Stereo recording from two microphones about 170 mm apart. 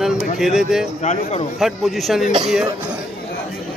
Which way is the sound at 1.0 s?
40° left (ahead or behind).